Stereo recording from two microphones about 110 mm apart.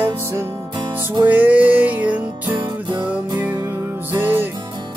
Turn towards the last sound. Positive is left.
turn(degrees=-20)  # may be behind; listen again after turning